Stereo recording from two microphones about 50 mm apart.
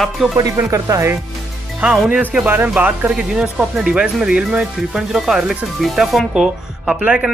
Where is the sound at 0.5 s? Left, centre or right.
Right.